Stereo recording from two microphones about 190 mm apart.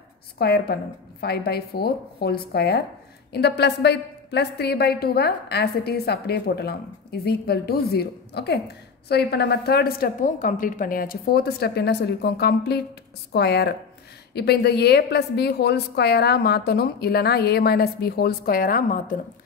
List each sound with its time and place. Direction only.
0.4 s a woman's voice: 55° left (ahead or behind)